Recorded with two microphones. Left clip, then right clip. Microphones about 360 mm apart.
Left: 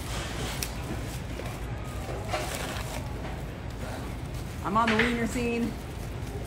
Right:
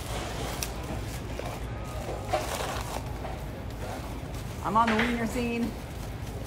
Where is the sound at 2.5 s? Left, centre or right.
Centre.